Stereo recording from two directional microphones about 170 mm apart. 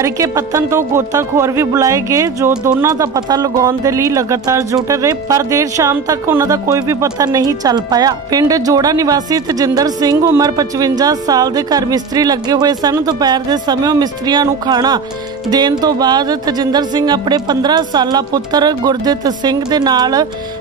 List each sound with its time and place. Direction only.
0.0 s speech: 20° right (ahead or behind)